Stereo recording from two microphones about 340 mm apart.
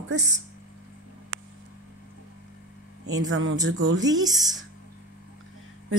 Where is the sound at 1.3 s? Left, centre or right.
Right.